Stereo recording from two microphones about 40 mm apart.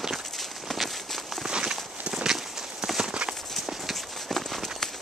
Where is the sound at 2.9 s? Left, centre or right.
Centre.